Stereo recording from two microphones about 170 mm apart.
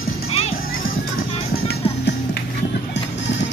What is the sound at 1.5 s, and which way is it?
Music, 65° left (ahead or behind).